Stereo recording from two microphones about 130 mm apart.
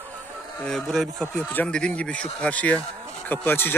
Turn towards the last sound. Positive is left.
turn(degrees=15)  # may be behind; listen again after turning